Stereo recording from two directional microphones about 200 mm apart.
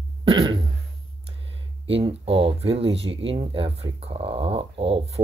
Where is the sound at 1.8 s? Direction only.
30° right (ahead or behind).